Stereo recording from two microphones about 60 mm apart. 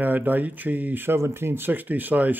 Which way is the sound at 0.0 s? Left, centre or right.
Right.